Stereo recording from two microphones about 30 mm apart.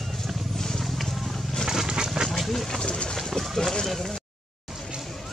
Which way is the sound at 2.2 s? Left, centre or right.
Centre.